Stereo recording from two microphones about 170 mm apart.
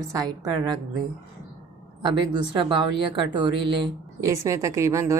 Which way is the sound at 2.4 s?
30° right (ahead or behind).